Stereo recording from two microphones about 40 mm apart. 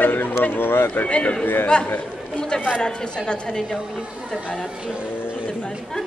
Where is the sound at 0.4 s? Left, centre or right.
Left.